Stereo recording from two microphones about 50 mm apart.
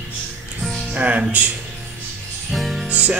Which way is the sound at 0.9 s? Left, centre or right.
Right.